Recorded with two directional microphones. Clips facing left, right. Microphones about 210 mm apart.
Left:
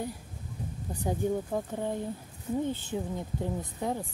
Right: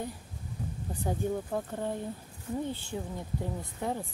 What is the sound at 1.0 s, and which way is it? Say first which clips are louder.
Speech: left 2 dB; 10° left (ahead or behind).